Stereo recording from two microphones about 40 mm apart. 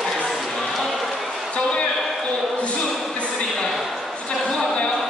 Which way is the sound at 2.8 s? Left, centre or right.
Centre.